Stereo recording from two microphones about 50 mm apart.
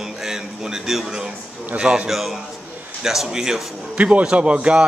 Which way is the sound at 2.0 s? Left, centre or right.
Centre.